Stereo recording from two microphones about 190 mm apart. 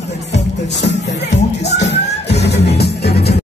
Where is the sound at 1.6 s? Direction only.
65° left (ahead or behind).